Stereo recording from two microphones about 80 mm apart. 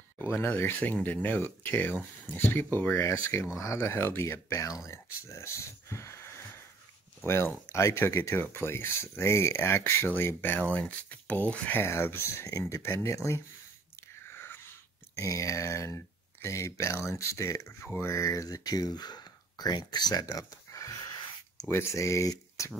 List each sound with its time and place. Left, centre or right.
0.2 s speech: left
11.8 s speech: left
14.3 s a sound: left
15.1 s speech: left
17.8 s speech: left
18.1 s speech: left
21.6 s speech: left